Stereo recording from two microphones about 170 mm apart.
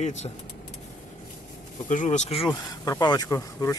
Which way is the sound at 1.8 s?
45° left (ahead or behind).